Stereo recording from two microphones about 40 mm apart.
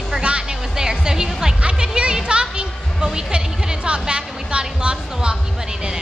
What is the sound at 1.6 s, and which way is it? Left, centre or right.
Music, right.